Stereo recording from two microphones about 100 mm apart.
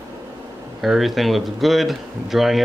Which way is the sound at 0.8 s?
Centre (ahead or behind).